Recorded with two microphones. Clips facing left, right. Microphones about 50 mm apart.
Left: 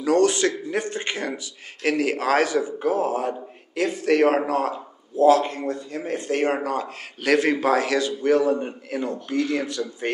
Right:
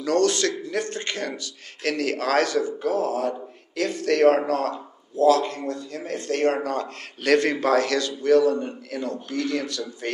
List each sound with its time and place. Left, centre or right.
0.0 s a man's voice: centre
5.2 s a man's voice: left